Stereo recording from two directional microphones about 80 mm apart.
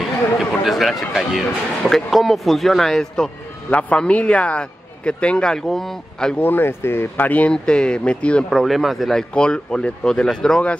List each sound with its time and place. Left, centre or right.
0.4 s run: centre
1.9 s a man's voice: centre
6.4 s a man's voice: left
8.5 s speech: centre
9.3 s a man's voice: centre